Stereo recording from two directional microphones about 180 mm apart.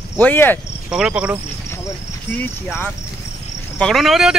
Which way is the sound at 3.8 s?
Centre (ahead or behind).